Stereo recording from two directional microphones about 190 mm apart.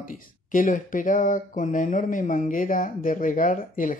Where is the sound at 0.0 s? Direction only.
45° left (ahead or behind).